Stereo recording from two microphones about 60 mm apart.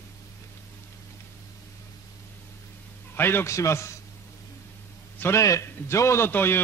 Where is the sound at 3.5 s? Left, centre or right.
Left.